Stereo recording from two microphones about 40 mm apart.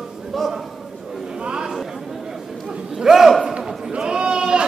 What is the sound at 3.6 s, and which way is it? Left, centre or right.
Sheep, centre.